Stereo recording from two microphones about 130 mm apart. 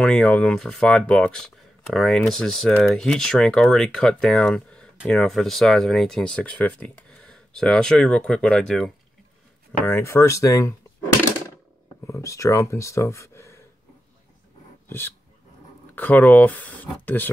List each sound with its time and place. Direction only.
0.0 s speech: 5° left (ahead or behind)
9.7 s speech: 15° left (ahead or behind)
12.1 s speech: 25° left (ahead or behind)
14.9 s speech: 15° left (ahead or behind)